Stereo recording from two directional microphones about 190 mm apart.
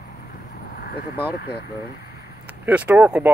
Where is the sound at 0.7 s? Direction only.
55° left (ahead or behind).